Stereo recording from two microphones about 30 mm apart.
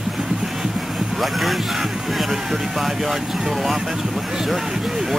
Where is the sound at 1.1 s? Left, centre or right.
Centre.